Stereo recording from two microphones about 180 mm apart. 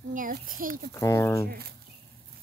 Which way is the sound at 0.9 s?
15° left (ahead or behind).